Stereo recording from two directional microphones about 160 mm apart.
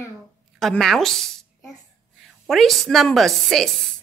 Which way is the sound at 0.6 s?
Centre (ahead or behind).